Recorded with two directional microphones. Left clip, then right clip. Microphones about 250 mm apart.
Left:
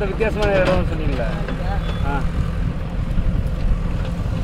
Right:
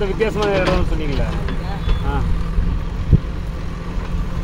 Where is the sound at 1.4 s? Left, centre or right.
Centre.